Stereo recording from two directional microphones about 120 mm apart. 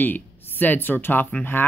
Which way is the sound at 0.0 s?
15° left (ahead or behind).